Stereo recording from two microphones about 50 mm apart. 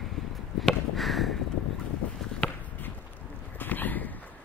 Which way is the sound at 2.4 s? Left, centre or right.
Left.